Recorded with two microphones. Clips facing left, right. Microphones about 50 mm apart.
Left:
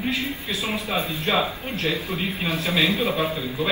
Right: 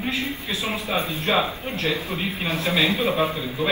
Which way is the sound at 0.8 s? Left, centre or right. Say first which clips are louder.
Right 2 dB; right.